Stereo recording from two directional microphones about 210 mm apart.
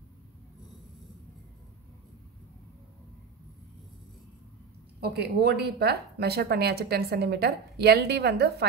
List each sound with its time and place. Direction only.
5.0 s a woman's voice: 50° right (ahead or behind)